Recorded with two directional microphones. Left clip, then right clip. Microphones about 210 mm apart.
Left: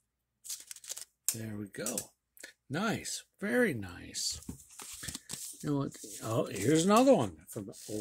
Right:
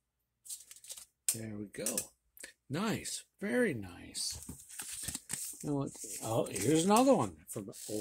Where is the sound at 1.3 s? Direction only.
20° left (ahead or behind).